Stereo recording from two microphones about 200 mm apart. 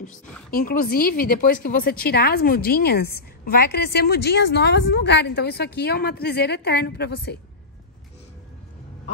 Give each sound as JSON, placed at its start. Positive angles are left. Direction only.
{"t": 0.5, "sound": "a woman's voice", "side_deg": 50}